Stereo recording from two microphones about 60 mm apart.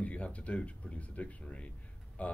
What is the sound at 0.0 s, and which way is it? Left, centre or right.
Speech, left.